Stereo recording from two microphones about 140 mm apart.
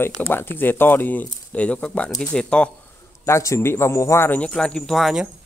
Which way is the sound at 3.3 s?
20° left (ahead or behind).